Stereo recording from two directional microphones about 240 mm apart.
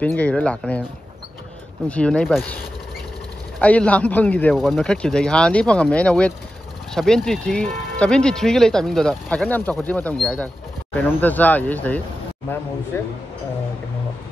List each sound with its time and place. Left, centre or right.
0.0 s speech: centre
1.9 s speech: centre